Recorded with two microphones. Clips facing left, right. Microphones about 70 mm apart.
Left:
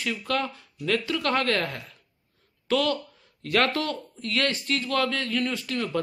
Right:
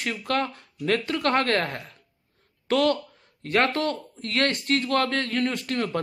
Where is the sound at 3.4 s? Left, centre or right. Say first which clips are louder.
Right 1 dB; right.